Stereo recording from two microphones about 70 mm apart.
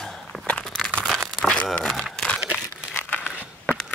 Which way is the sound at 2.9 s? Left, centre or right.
Left.